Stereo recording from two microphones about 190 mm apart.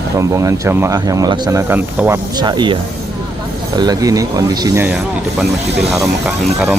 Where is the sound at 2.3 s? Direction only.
25° right (ahead or behind).